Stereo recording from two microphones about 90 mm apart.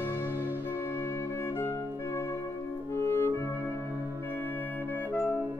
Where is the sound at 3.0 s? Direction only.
30° left (ahead or behind).